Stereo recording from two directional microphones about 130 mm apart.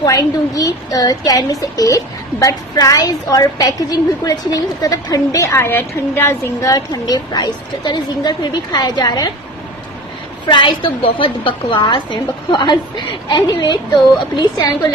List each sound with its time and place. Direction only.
0.0 s a woman's voice: 30° left (ahead or behind)
10.4 s a woman's voice: 35° left (ahead or behind)